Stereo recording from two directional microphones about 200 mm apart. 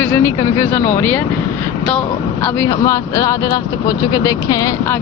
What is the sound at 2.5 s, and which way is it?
Speech, 15° left (ahead or behind).